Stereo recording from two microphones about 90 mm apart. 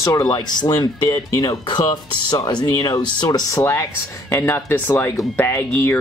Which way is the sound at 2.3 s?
55° left (ahead or behind).